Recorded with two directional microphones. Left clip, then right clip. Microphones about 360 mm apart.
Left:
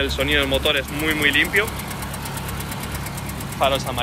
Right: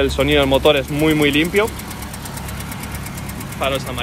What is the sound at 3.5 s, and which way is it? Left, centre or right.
Speech, centre.